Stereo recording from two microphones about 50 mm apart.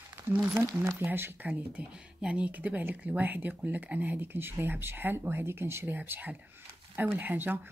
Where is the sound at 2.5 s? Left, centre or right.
Right.